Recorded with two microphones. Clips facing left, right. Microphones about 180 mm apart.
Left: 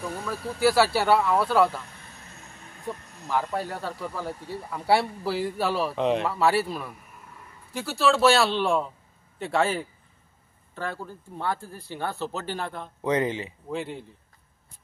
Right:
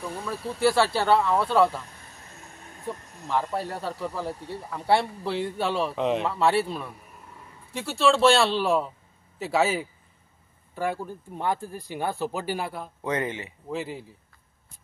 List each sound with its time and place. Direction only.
0.2 s speech: centre (ahead or behind)
3.3 s speech: centre (ahead or behind)
13.0 s speech: 25° left (ahead or behind)
13.7 s speech: centre (ahead or behind)